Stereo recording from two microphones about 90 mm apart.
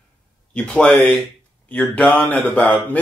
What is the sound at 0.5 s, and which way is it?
Speech, 10° left (ahead or behind).